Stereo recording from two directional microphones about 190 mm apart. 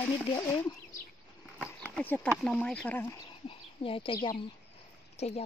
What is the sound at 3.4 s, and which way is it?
Speech, 30° left (ahead or behind).